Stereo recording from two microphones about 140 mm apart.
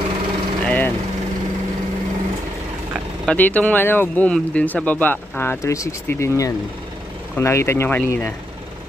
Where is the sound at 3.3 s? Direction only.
10° left (ahead or behind).